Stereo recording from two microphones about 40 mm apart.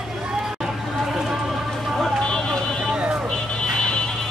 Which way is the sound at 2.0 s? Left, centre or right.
Centre.